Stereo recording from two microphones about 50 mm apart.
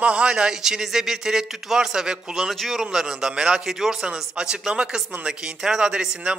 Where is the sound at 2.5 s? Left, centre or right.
Centre.